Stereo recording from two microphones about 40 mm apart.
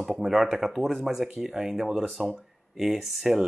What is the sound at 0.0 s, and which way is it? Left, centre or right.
Speech, centre.